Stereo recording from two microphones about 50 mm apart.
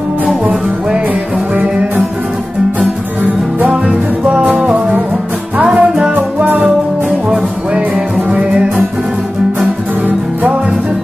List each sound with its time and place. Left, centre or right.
3.6 s music: right
8.3 s music: right